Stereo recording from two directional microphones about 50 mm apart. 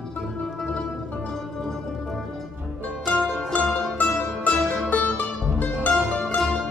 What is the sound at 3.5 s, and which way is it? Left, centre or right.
Music, left.